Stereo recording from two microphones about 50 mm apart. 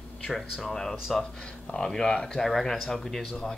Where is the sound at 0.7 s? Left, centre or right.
Centre.